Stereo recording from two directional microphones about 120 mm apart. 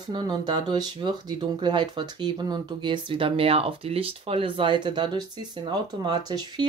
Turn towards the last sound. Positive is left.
turn(degrees=-35)  # may be behind; listen again after turning